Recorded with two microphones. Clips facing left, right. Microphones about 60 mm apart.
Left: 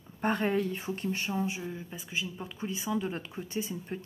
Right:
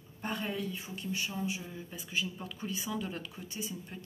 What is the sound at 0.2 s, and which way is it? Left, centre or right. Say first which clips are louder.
Speech: left 8 dB; left.